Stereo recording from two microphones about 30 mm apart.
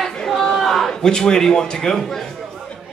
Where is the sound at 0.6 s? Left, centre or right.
Centre.